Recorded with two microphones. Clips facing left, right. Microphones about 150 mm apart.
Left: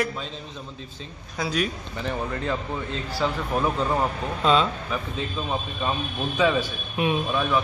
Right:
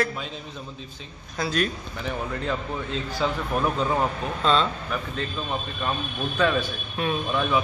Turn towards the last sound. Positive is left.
turn(degrees=0)  # may be behind; listen again after turning